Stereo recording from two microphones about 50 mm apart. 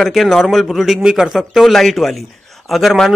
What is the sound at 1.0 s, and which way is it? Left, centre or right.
Speech, centre.